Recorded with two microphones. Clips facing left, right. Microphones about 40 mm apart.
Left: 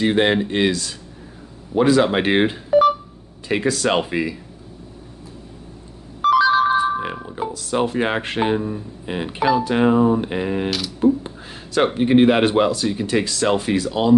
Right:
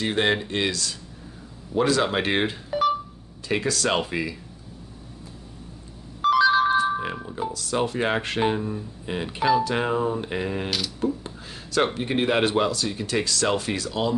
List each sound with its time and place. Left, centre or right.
0.0 s speech: centre
2.7 s telephone dialing: centre
3.4 s speech: centre
6.2 s ringtone: centre
7.5 s speech: left